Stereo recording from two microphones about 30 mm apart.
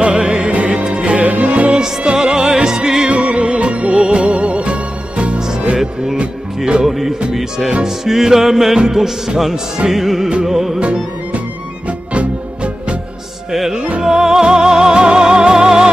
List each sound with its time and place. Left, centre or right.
0.0 s music: right
0.5 s music: right
2.1 s music: right
3.1 s music: right
6.6 s music: right
6.9 s music: centre
8.7 s music: right
10.8 s music: right
13.5 s music: centre